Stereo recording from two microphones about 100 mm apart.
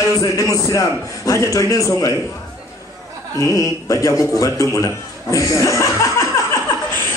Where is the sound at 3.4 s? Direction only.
35° left (ahead or behind).